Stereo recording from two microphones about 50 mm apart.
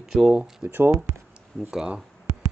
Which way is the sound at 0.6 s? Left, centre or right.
Right.